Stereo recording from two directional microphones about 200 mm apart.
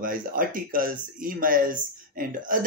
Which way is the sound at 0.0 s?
45° right (ahead or behind).